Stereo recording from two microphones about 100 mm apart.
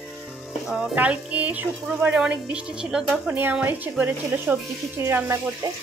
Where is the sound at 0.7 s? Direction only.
10° right (ahead or behind).